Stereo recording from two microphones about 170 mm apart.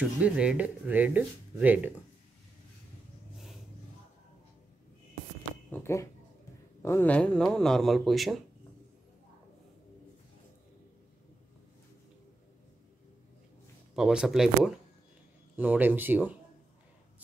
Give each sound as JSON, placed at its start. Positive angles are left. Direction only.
{"t": 0.0, "sound": "speech", "side_deg": -5}
{"t": 5.7, "sound": "speech", "side_deg": 15}
{"t": 13.9, "sound": "speech", "side_deg": -5}